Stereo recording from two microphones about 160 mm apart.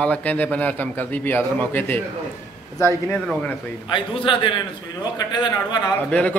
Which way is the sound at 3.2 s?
Centre (ahead or behind).